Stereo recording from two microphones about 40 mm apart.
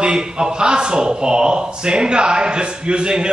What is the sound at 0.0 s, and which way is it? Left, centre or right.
Speech, centre.